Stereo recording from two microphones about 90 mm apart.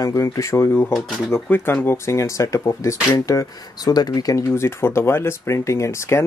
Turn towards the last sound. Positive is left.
turn(degrees=30)  # may be behind; listen again after turning